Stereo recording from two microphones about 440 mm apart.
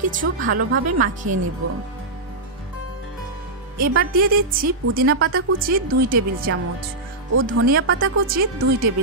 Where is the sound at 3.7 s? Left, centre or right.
Centre.